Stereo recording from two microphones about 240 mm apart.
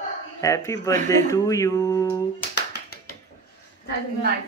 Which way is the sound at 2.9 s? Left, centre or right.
Left.